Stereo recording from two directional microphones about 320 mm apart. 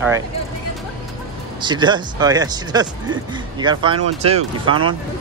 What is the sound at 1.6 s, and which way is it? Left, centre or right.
Speech, centre.